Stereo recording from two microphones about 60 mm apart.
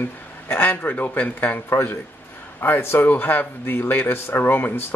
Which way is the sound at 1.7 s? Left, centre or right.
Left.